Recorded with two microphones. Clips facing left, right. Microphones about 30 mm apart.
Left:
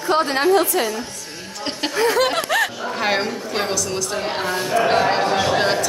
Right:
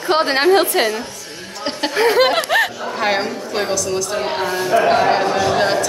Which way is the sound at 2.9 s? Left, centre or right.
Centre.